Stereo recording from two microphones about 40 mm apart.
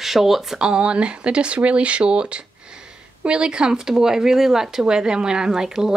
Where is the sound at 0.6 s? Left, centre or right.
Right.